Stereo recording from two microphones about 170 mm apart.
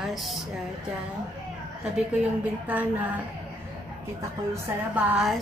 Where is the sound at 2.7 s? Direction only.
10° right (ahead or behind).